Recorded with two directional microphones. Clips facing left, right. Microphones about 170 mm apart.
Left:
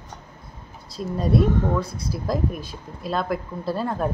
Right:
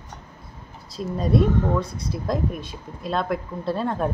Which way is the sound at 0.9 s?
Centre (ahead or behind).